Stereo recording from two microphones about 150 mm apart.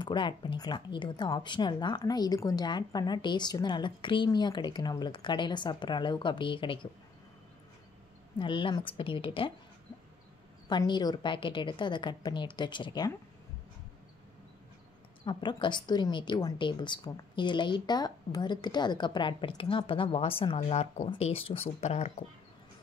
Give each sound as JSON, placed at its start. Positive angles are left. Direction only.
{"t": 0.0, "sound": "speech", "side_deg": 30}
{"t": 8.4, "sound": "speech", "side_deg": 35}
{"t": 10.7, "sound": "speech", "side_deg": 30}
{"t": 15.2, "sound": "speech", "side_deg": 30}